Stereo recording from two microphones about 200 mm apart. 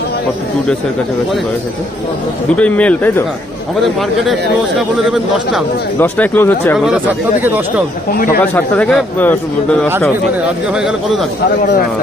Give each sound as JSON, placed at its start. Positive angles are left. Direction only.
{"t": 2.5, "sound": "speech", "side_deg": 5}
{"t": 4.3, "sound": "speech", "side_deg": 0}
{"t": 7.4, "sound": "speech", "side_deg": -10}
{"t": 8.1, "sound": "speech", "side_deg": 45}
{"t": 8.5, "sound": "speech", "side_deg": 5}
{"t": 10.4, "sound": "speech", "side_deg": -5}